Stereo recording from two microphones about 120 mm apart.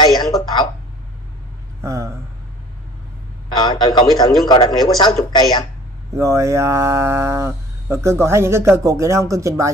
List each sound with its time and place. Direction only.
0.2 s a sound: 35° left (ahead or behind)
1.8 s speech: 25° right (ahead or behind)
3.4 s speech: 40° left (ahead or behind)
6.1 s speech: 25° right (ahead or behind)